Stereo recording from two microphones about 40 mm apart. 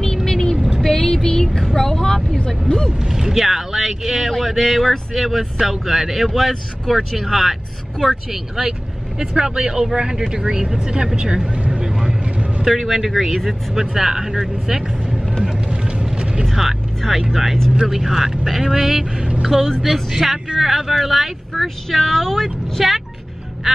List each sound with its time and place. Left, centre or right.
0.0 s vehicle: centre
0.7 s a sound: centre
1.8 s speech: centre
2.9 s speech: centre
9.2 s speech: centre
11.8 s vehicle: centre
12.6 s speech: centre
16.5 s speech: centre